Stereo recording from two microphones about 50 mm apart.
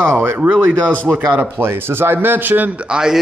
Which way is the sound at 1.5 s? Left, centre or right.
Right.